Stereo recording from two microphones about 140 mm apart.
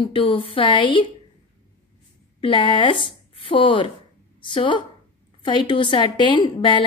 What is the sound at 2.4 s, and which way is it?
A woman's voice, 35° left (ahead or behind).